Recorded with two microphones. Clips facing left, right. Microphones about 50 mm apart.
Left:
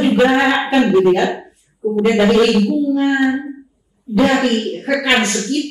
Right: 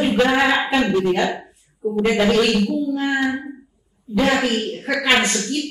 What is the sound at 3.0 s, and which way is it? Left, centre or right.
Child singing, centre.